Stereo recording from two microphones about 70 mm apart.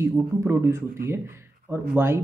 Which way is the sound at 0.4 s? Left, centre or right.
Right.